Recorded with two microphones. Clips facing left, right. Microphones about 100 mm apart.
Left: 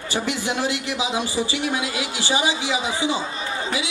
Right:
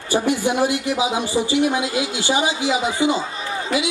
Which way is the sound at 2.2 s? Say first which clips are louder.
Right 1 dB; 50° right (ahead or behind).